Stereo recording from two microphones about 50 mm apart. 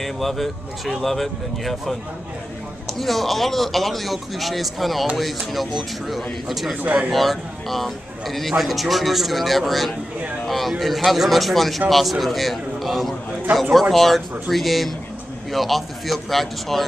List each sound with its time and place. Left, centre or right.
0.0 s a man's voice: centre
6.8 s speech: right
7.1 s a man's voice: centre